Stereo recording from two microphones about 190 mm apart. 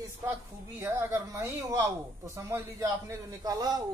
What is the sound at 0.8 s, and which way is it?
Speech, 15° right (ahead or behind).